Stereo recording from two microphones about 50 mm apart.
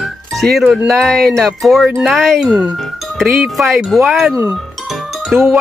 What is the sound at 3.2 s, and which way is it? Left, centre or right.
Speech, centre.